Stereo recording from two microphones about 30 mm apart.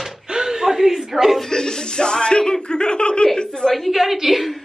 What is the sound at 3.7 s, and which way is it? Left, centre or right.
Speech, centre.